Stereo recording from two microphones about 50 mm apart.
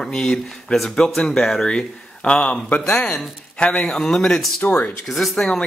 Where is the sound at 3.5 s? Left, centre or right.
Left.